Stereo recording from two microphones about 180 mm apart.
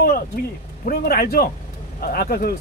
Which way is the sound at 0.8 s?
55° left (ahead or behind).